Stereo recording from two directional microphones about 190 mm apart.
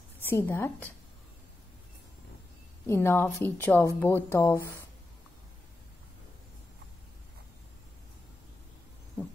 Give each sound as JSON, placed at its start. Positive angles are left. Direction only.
{"t": 0.3, "sound": "a woman's voice", "side_deg": 10}
{"t": 2.9, "sound": "a woman's voice", "side_deg": 15}